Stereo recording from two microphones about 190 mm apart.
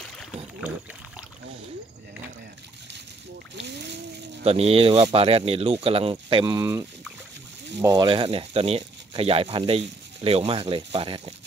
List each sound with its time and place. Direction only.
0.6 s speech: 10° right (ahead or behind)
3.5 s a sound: 65° right (ahead or behind)
4.5 s speech: 30° right (ahead or behind)